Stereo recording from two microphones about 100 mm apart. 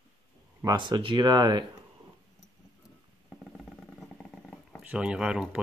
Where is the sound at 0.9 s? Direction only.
55° right (ahead or behind).